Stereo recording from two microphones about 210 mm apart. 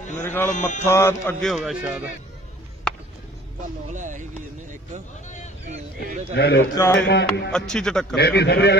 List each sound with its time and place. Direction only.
0.1 s sheep: 10° left (ahead or behind)
0.5 s speech: 35° left (ahead or behind)
0.8 s speech: 10° left (ahead or behind)
1.4 s speech: centre (ahead or behind)
3.9 s speech: 35° right (ahead or behind)
6.3 s a man's voice: 55° left (ahead or behind)
6.7 s speech: 15° left (ahead or behind)
7.0 s a man's voice: 55° left (ahead or behind)
7.5 s speech: 5° left (ahead or behind)
8.2 s a man's voice: 50° left (ahead or behind)